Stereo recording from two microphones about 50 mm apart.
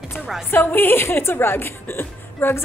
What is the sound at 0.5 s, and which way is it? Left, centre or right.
A woman's voice, left.